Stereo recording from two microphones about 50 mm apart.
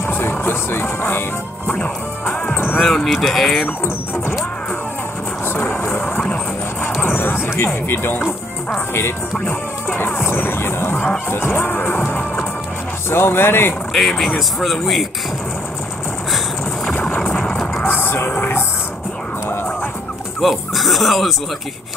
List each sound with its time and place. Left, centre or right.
0.0 s music: left
2.5 s music: left
2.8 s speech: centre
5.5 s vehicle: left
7.0 s music: left
7.5 s speech: left
9.8 s speech: left
13.1 s speech: left
13.9 s speech: centre
17.8 s music: left
20.3 s music: centre